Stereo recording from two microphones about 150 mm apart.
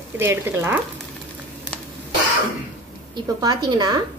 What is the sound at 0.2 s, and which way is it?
Speech, 15° right (ahead or behind).